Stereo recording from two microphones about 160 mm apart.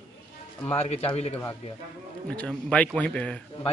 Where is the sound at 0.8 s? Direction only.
40° left (ahead or behind).